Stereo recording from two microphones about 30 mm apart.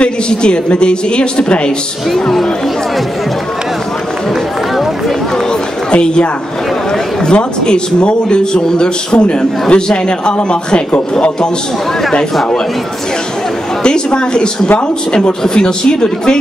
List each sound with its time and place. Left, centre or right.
0.0 s a man's voice: left
5.9 s a woman's voice: left
7.2 s a man's voice: left
13.8 s speech: left